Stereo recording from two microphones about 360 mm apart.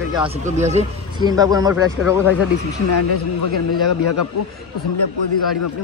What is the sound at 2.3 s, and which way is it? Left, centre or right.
Speech, left.